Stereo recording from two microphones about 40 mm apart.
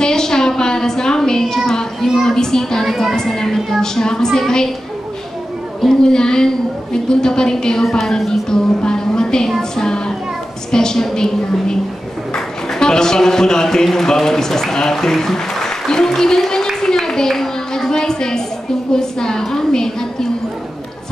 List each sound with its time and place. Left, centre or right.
0.0 s a sound: centre
1.7 s child singing: centre
2.2 s a child's voice: centre
2.9 s speech: centre
3.2 s a woman's voice: centre
5.8 s a woman's voice: centre
9.6 s music: centre
10.7 s a woman's voice: centre